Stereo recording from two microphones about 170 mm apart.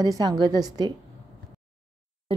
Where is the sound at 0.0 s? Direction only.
25° right (ahead or behind).